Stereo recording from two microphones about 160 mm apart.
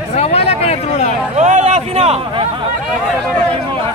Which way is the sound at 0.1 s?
40° left (ahead or behind).